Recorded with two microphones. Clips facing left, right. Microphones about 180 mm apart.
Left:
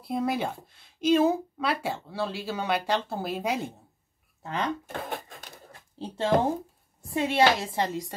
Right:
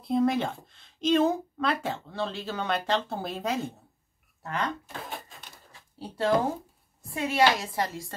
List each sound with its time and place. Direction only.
0.0 s speech: 5° left (ahead or behind)
5.9 s a woman's voice: 20° left (ahead or behind)